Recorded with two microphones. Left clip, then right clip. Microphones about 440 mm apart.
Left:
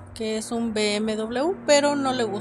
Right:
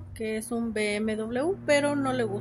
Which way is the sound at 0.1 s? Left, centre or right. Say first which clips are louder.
Left 4 dB; right.